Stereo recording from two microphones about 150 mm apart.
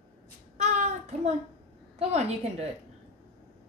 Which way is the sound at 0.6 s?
50° right (ahead or behind).